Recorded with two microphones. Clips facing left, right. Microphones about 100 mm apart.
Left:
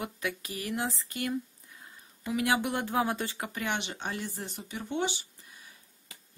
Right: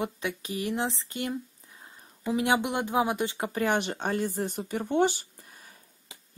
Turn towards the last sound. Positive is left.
turn(degrees=-45)  # may be behind; listen again after turning